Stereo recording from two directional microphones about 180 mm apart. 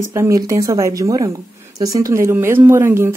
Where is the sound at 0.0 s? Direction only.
15° right (ahead or behind).